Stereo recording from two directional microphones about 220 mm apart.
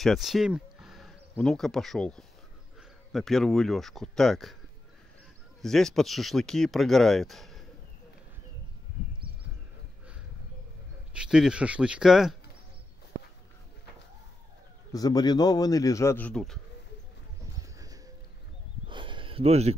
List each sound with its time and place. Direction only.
0.0 s speech: centre (ahead or behind)
5.6 s speech: centre (ahead or behind)
11.1 s speech: 5° right (ahead or behind)
14.9 s a man's voice: 15° left (ahead or behind)
18.9 s a sound: 20° right (ahead or behind)